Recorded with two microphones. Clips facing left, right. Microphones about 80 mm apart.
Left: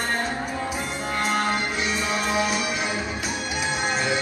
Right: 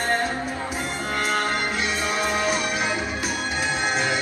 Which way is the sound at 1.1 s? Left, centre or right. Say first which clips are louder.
Left 1 dB; left.